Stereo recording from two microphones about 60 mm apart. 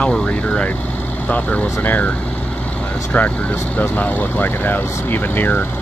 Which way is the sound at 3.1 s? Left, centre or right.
Left.